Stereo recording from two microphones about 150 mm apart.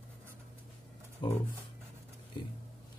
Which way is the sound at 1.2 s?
35° left (ahead or behind).